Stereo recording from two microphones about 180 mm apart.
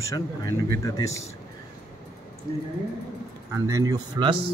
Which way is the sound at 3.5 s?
20° right (ahead or behind).